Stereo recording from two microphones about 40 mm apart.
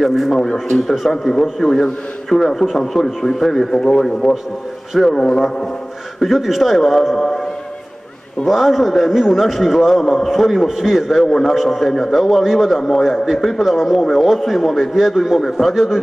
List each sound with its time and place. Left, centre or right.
0.0 s a man's voice: centre
0.4 s a man's voice: centre
6.1 s a man's voice: centre
8.5 s a man's voice: centre